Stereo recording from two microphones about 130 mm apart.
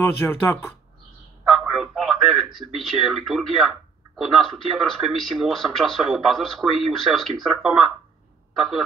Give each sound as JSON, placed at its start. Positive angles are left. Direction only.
{"t": 0.0, "sound": "speech", "side_deg": 15}
{"t": 1.5, "sound": "a man's voice", "side_deg": -5}